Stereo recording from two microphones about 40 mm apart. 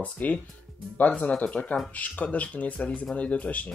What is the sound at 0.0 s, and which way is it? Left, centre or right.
Speech, left.